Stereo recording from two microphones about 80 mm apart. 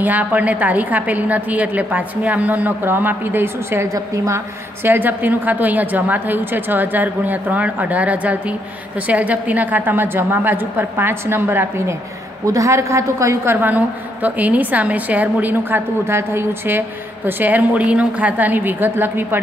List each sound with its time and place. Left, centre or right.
0.0 s a woman's voice: centre; by 4.4 s right
4.8 s a woman's voice: right
12.4 s a woman's voice: right
13.6 s a woman's voice: right